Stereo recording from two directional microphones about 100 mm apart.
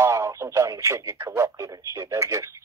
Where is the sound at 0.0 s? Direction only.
30° right (ahead or behind).